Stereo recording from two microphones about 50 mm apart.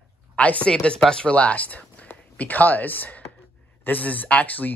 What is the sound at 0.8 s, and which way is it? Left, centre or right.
Speech, centre.